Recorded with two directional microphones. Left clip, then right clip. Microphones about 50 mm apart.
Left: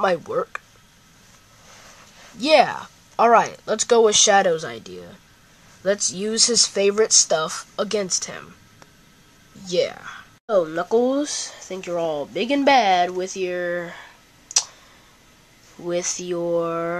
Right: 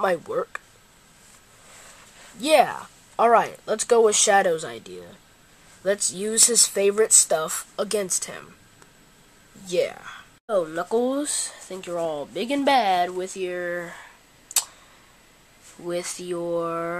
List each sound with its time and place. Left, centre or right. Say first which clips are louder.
0.0 s speech: left 3 dB; centre
1.7 s a sound: left 2 dB; centre
4.1 s speech: left 3 dB; centre
6.7 s speech: left 2 dB; centre
8.1 s speech: left 4 dB; centre
9.7 s speech: left 2 dB; centre
10.8 s speech: left 4 dB; left
11.7 s speech: left 3 dB; centre
13.4 s a sound: left 4 dB; centre
15.9 s speech: left 4 dB; left
16.3 s speech: left 3 dB; centre